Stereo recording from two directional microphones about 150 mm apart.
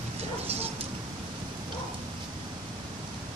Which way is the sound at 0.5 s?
45° right (ahead or behind).